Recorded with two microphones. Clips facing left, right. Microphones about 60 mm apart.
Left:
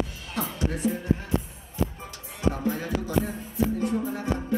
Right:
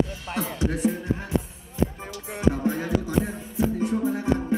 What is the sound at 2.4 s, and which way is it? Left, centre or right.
Music, right.